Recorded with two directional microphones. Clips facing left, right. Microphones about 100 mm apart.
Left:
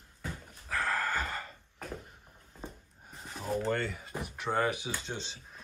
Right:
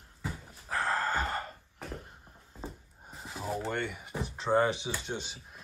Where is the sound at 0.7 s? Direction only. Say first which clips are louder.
Right 2 dB; 30° right (ahead or behind).